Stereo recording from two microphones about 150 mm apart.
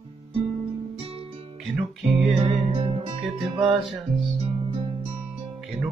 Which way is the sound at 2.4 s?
40° right (ahead or behind).